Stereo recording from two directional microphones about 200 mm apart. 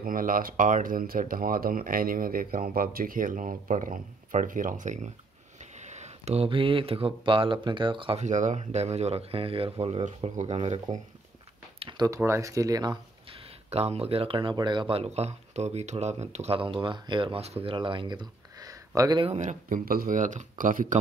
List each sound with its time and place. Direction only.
0.0 s speech: 45° right (ahead or behind)
11.8 s a sound: 20° right (ahead or behind)
12.2 s speech: 15° right (ahead or behind); by 21.0 s 40° right (ahead or behind)